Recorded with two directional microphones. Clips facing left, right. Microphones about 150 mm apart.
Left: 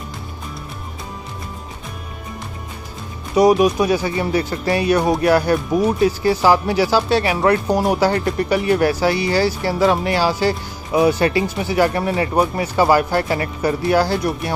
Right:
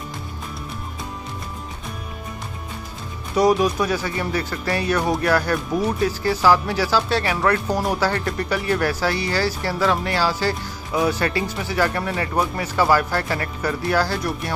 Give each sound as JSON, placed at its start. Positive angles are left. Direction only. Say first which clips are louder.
{"t": 3.3, "sound": "speech", "louder": "left 4 dB", "side_deg": 15}